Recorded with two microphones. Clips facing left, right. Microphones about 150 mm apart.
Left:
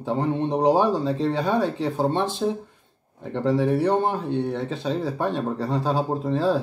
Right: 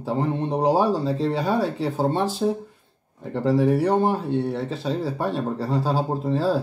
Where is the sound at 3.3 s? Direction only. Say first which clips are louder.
Right 1 dB; 5° right (ahead or behind).